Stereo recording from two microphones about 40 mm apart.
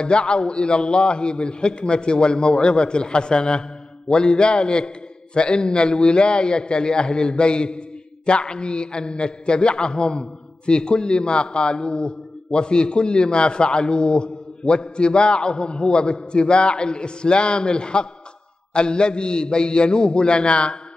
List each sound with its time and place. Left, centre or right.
0.0 s a man's voice: left